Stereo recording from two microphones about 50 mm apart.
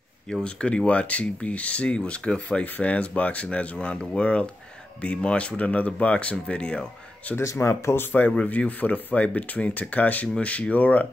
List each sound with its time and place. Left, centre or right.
0.3 s speech: centre
7.4 s speech: left
8.5 s speech: left